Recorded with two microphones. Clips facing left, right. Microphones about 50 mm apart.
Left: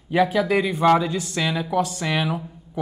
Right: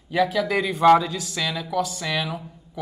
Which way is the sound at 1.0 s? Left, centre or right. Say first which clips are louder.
Left 3 dB; centre.